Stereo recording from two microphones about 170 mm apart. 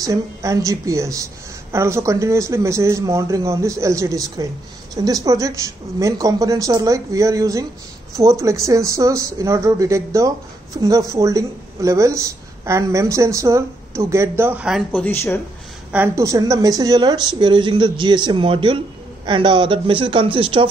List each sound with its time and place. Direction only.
0.0 s a woman's voice: 20° right (ahead or behind)
14.9 s speech: 10° left (ahead or behind)
15.9 s speech: 15° right (ahead or behind); by 20.6 s 30° right (ahead or behind)